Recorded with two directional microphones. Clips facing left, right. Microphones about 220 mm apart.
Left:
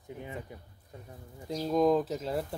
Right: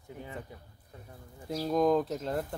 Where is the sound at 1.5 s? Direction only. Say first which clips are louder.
Left 1 dB; centre (ahead or behind).